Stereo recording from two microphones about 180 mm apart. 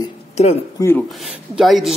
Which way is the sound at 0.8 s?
20° left (ahead or behind).